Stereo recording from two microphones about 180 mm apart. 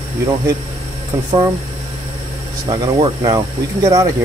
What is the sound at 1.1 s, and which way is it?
Speech, 15° right (ahead or behind).